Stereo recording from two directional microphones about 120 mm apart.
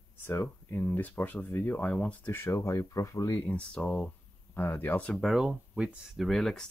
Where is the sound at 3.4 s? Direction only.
10° left (ahead or behind).